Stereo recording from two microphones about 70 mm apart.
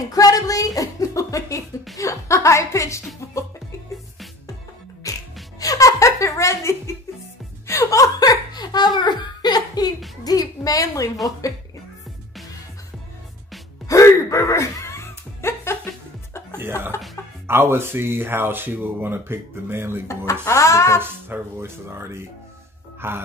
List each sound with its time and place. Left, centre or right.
0.0 s a woman's voice: left
5.1 s music: left
5.6 s laughter: left
7.6 s chuckle: left
8.9 s a sound: left
10.2 s a sound: left
13.8 s music: left
16.5 s music: right
17.5 s speech: right
20.4 s a woman's voice: left
21.0 s speech: right
22.9 s music: right